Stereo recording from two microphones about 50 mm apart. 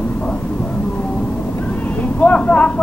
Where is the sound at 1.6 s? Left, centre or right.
Left.